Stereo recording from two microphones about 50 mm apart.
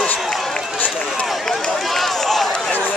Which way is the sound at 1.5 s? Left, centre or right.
Centre.